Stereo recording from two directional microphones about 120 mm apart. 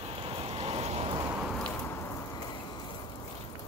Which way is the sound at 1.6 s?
15° left (ahead or behind).